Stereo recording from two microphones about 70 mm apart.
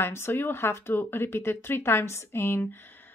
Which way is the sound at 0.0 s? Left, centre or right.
Left.